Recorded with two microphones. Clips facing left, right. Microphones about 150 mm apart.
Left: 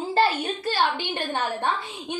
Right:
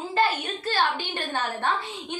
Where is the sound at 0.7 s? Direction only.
15° left (ahead or behind).